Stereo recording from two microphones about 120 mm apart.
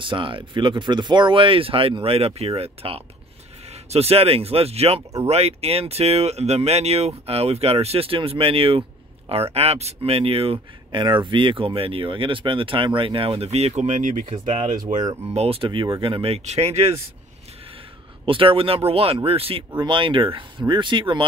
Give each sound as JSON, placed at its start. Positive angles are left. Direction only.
{"t": 0.0, "sound": "speech", "side_deg": -45}
{"t": 14.4, "sound": "speech", "side_deg": -70}
{"t": 15.2, "sound": "speech", "side_deg": -55}
{"t": 16.4, "sound": "speech", "side_deg": -60}
{"t": 18.2, "sound": "speech", "side_deg": -45}